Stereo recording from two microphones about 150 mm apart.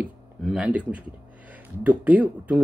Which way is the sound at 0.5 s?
5° right (ahead or behind).